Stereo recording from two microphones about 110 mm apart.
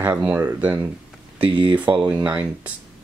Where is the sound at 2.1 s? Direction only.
15° right (ahead or behind).